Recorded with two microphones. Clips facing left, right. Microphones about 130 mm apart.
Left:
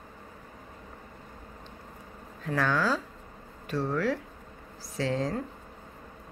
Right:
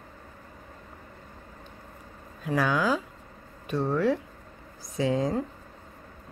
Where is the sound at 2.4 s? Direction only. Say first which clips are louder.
Right 2 dB; 10° right (ahead or behind).